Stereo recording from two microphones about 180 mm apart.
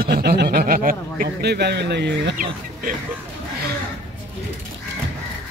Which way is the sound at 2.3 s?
50° right (ahead or behind).